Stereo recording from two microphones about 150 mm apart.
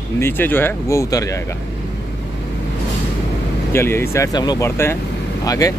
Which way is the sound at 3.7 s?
15° left (ahead or behind).